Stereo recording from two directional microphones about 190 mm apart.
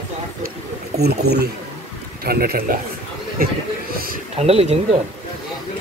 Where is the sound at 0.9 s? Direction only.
60° right (ahead or behind).